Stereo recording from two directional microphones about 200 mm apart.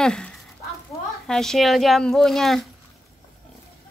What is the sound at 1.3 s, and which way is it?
Speech, centre (ahead or behind).